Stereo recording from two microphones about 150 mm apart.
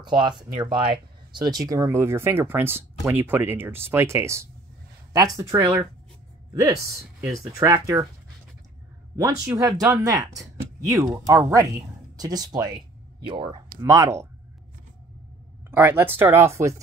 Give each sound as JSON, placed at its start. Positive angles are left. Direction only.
{"t": 0.0, "sound": "speech", "side_deg": -30}
{"t": 7.2, "sound": "speech", "side_deg": -20}
{"t": 9.1, "sound": "speech", "side_deg": -20}
{"t": 15.7, "sound": "speech", "side_deg": -15}